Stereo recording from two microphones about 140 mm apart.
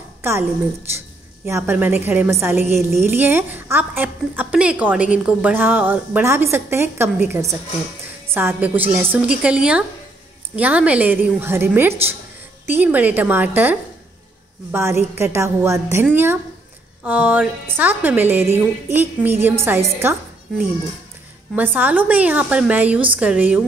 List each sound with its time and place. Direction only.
0.2 s a woman's voice: 15° right (ahead or behind)
21.5 s a woman's voice: 10° right (ahead or behind)